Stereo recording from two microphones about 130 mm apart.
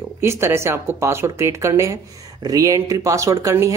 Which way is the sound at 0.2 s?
20° right (ahead or behind).